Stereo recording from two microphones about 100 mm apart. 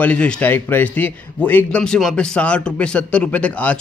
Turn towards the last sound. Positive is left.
turn(degrees=15)  # may be behind; listen again after turning